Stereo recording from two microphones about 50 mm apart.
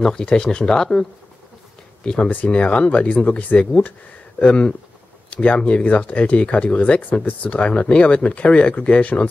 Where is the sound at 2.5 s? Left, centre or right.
Left.